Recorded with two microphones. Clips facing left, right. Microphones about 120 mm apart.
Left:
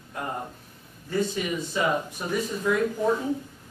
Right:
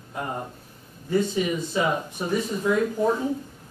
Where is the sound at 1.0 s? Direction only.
20° right (ahead or behind).